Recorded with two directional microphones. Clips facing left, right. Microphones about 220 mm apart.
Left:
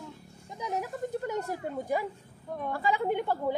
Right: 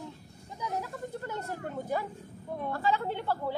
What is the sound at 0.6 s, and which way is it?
Speech, 20° left (ahead or behind).